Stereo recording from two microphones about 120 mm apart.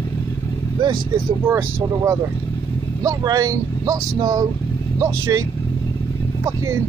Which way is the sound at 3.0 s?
30° right (ahead or behind).